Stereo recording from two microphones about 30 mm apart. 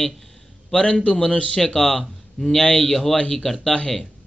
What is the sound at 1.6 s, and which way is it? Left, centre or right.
Speech, centre.